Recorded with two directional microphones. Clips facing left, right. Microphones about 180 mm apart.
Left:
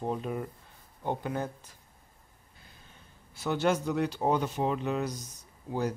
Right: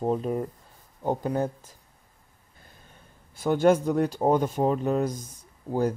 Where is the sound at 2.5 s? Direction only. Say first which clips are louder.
Right 3 dB; 50° right (ahead or behind).